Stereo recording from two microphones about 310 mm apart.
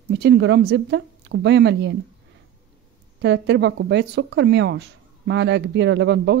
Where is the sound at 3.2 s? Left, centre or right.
Right.